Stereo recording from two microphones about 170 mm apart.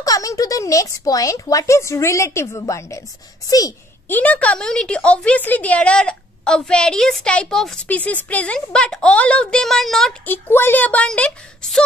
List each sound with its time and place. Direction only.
0.0 s speech: 20° left (ahead or behind)
4.1 s a woman's voice: 10° left (ahead or behind)